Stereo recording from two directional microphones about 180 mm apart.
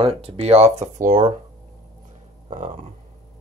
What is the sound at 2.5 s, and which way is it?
Speech, 45° right (ahead or behind).